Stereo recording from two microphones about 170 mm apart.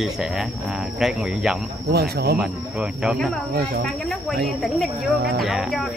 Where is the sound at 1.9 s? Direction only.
70° right (ahead or behind).